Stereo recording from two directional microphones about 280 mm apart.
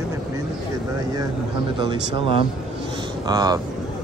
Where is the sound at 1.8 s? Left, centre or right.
Centre.